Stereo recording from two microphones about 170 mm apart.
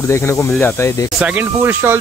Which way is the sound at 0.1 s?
15° left (ahead or behind).